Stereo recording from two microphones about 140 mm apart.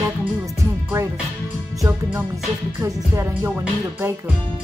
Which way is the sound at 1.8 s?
20° right (ahead or behind).